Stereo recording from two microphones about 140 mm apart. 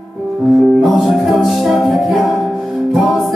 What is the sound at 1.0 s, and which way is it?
Music, centre (ahead or behind).